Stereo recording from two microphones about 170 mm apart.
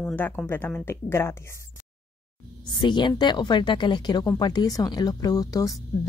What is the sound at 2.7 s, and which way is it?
A woman's voice, 25° left (ahead or behind).